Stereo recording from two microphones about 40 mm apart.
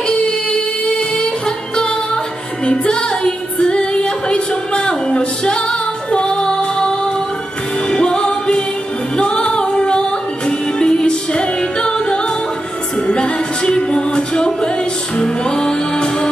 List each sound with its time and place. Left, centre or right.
2.6 s music: left